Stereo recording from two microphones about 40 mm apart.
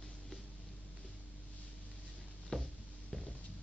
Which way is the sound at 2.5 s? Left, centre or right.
Centre.